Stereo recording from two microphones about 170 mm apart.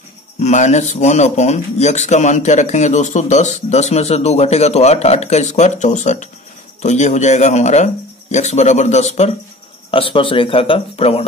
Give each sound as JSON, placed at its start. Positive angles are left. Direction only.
{"t": 0.4, "sound": "a man's voice", "side_deg": 45}